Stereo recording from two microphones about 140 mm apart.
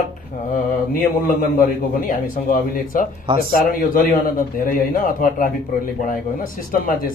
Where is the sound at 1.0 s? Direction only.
85° left.